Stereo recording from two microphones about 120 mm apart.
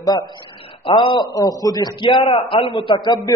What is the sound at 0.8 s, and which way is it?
Speech, 40° left (ahead or behind).